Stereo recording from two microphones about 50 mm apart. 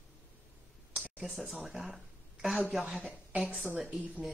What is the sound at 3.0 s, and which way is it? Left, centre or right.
Speech, centre.